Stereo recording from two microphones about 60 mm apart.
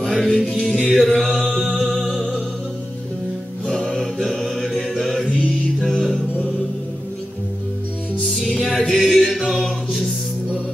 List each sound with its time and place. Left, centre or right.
0.1 s music: centre
1.7 s music: centre
4.9 s music: centre
8.3 s music: centre